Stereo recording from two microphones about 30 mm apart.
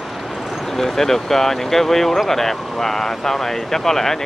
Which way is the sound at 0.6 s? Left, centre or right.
Centre.